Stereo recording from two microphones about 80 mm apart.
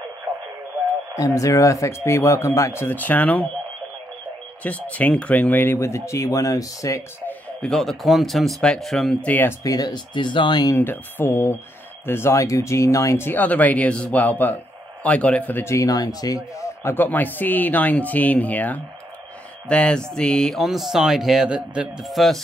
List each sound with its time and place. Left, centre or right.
1.1 s speech: left
4.6 s speech: centre; by 7.0 s left
7.2 s a sound: left
7.6 s speech: centre
9.2 s speech: left
9.6 s speech: left
10.8 s speech: left
13.3 s speech: left
15.6 s a man's voice: left
16.9 s speech: left; by 22.0 s centre
22.0 s speech: centre